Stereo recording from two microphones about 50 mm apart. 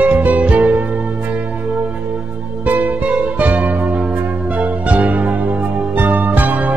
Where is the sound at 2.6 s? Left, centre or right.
Right.